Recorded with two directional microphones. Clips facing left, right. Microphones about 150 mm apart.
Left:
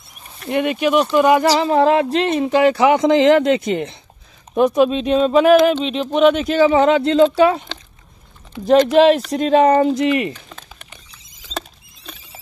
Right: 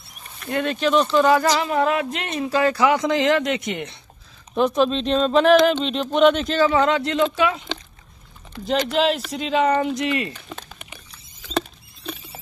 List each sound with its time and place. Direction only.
0.5 s speech: 15° left (ahead or behind)
1.5 s speech: 30° left (ahead or behind)
4.7 s speech: 10° left (ahead or behind)
6.8 s speech: 25° left (ahead or behind)
8.6 s speech: 45° left (ahead or behind)
10.5 s a sound: 10° right (ahead or behind)
11.5 s rodents: centre (ahead or behind)